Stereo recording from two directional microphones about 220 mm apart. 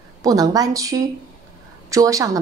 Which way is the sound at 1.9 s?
15° right (ahead or behind).